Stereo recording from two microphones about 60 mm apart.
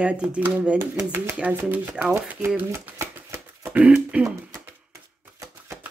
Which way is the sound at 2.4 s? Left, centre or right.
Right.